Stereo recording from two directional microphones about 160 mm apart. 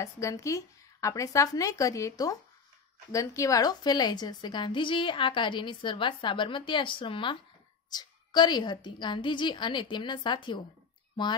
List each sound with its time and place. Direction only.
0.0 s a woman's voice: 20° left (ahead or behind)